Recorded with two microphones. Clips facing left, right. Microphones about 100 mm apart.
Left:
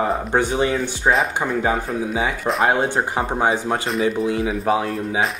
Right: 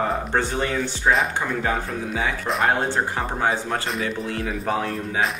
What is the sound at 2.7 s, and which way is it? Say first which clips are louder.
Speech: left 3 dB; 15° left (ahead or behind).